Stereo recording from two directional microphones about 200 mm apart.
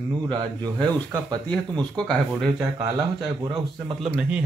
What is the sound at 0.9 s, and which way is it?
Speech, 20° right (ahead or behind).